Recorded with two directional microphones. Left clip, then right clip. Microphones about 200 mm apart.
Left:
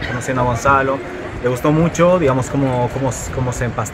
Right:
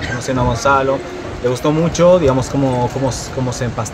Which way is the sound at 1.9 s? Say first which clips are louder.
Right 5 dB; 15° right (ahead or behind).